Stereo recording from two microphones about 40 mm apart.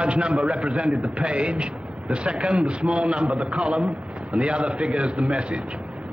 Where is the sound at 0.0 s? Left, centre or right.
Right.